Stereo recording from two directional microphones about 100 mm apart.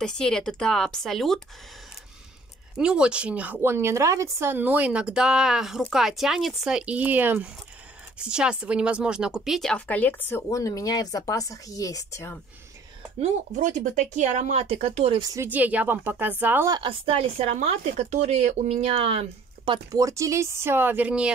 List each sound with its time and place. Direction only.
0.0 s speech: 5° left (ahead or behind)
2.8 s speech: 10° right (ahead or behind); by 10.4 s 15° left (ahead or behind)
10.5 s speech: 35° left (ahead or behind)
14.5 s speech: 90° right
15.4 s speech: 15° right (ahead or behind)
16.8 s speech: 70° right (ahead or behind)
19.9 s speech: 35° right (ahead or behind); by 21.3 s 15° right (ahead or behind)